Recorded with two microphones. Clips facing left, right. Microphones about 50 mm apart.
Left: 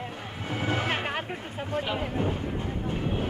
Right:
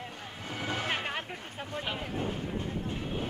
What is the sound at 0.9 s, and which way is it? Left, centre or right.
Music, centre.